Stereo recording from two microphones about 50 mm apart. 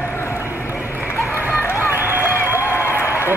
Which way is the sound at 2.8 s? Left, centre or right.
Left.